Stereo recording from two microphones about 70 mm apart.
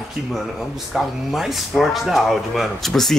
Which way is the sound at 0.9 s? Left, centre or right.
Centre.